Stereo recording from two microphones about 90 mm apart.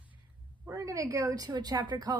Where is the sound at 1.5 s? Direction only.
50° right (ahead or behind).